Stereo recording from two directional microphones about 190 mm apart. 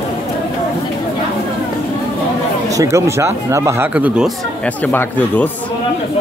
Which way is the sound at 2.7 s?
15° right (ahead or behind).